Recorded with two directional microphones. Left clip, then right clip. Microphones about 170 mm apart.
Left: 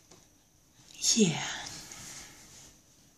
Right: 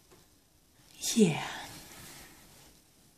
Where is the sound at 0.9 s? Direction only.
20° right (ahead or behind).